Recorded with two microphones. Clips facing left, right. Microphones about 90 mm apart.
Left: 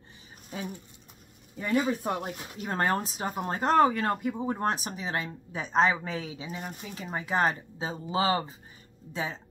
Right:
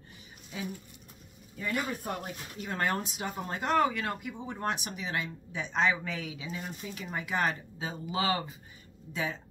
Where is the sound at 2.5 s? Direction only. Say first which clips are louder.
Left 4 dB; 40° left (ahead or behind).